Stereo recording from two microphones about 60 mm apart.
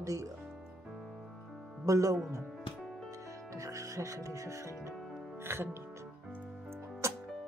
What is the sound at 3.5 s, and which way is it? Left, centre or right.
Speech, right.